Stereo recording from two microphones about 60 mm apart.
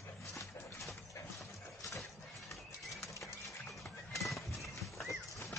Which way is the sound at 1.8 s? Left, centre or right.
Left.